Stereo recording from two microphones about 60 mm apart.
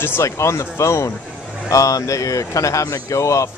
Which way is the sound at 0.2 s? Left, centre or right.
Left.